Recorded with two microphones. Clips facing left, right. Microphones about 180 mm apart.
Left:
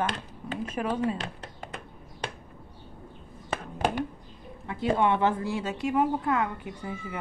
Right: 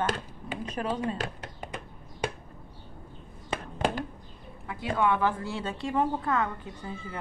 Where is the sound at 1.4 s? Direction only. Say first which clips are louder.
Right 1 dB; 10° right (ahead or behind).